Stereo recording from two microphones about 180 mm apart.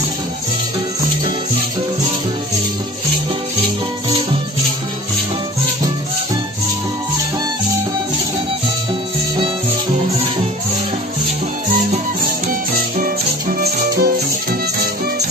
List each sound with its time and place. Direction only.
12.4 s music: 50° right (ahead or behind)